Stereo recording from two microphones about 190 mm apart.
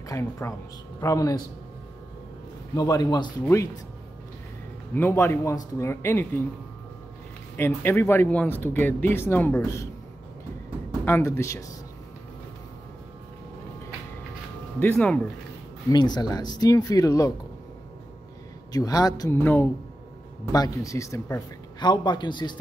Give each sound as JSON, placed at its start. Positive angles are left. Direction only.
{"t": 0.1, "sound": "speech", "side_deg": 15}
{"t": 2.7, "sound": "a man's voice", "side_deg": 20}
{"t": 4.9, "sound": "speech", "side_deg": 15}
{"t": 7.5, "sound": "speech", "side_deg": 10}
{"t": 11.1, "sound": "speech", "side_deg": 15}
{"t": 14.8, "sound": "speech", "side_deg": 5}
{"t": 15.9, "sound": "a man's voice", "side_deg": 20}
{"t": 18.7, "sound": "a man's voice", "side_deg": 20}